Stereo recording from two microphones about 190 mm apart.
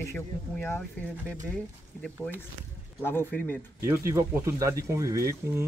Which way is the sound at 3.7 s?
15° right (ahead or behind).